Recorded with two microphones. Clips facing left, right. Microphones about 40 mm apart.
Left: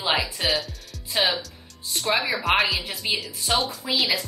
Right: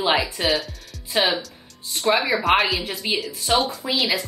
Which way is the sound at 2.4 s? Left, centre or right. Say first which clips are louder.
Right 1 dB; centre.